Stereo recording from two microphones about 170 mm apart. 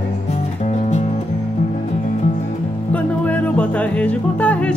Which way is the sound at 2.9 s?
10° left (ahead or behind).